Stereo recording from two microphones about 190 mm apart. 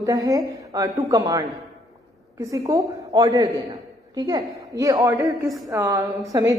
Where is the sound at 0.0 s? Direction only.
20° right (ahead or behind).